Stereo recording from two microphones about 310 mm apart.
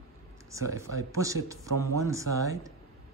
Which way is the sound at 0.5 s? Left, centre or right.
Centre.